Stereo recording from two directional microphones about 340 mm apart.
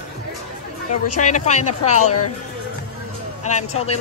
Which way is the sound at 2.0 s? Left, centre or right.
Left.